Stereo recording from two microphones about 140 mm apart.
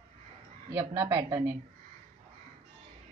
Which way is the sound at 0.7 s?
20° right (ahead or behind).